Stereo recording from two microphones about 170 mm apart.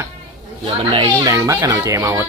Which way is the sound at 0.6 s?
30° right (ahead or behind).